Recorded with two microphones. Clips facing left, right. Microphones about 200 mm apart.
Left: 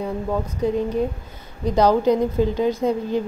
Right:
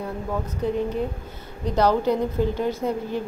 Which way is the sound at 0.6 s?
15° left (ahead or behind).